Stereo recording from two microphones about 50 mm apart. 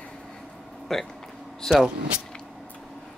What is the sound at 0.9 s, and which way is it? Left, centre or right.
Speech, centre.